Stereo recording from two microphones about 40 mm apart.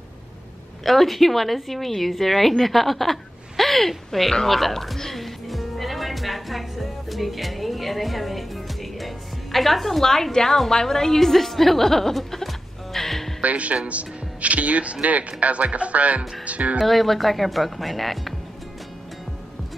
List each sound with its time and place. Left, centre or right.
0.8 s a woman's voice: centre
13.4 s speech: right
16.8 s a woman's voice: centre